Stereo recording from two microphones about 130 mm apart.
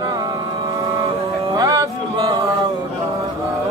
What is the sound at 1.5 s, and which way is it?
Music, 30° right (ahead or behind).